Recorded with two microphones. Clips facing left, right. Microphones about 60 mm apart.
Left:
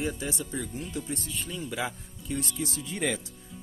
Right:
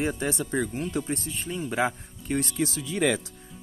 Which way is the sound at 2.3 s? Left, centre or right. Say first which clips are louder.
Right 6 dB; right.